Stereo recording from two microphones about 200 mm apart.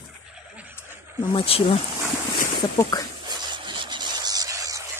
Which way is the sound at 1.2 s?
25° left (ahead or behind).